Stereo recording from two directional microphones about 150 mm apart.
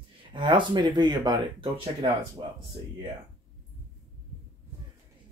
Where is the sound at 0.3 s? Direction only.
30° right (ahead or behind).